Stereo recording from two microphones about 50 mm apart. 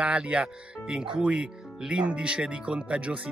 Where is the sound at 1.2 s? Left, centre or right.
Right.